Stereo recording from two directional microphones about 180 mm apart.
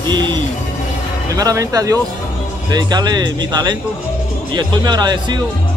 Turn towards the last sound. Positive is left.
turn(degrees=-20)  # may be behind; listen again after turning